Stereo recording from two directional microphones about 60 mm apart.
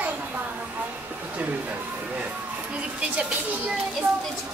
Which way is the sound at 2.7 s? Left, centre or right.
Centre.